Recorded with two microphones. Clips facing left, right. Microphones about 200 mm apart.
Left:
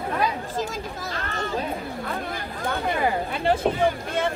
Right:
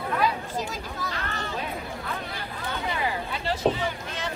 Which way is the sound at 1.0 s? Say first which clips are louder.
Left 3 dB; 40° left (ahead or behind).